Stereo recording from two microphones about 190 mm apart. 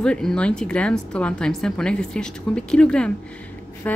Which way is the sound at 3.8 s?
10° left (ahead or behind).